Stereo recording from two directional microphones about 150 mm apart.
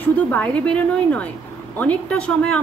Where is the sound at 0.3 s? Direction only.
10° left (ahead or behind).